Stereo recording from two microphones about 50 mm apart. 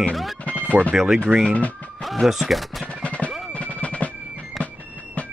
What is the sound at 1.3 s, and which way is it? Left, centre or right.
Speech, right.